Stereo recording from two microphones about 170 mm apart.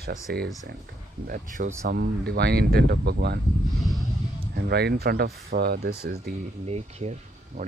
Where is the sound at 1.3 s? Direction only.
50° right (ahead or behind).